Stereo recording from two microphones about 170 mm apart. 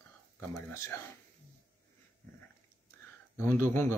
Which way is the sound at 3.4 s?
15° left (ahead or behind).